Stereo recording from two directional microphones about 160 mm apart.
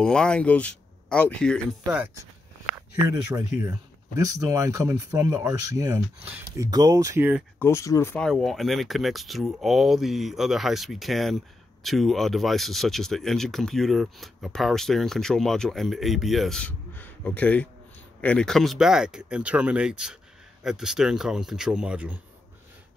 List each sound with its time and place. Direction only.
0.0 s speech: 5° left (ahead or behind)
3.1 s speech: 20° right (ahead or behind)
6.7 s speech: 20° right (ahead or behind)
7.5 s speech: 15° left (ahead or behind)
8.3 s speech: centre (ahead or behind)